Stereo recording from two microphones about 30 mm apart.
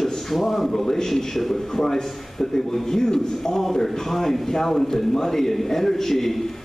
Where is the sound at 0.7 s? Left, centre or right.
Centre.